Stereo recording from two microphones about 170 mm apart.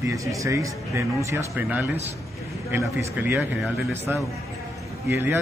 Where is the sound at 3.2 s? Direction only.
5° right (ahead or behind).